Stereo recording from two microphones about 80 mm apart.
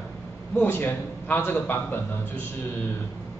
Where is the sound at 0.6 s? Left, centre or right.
Left.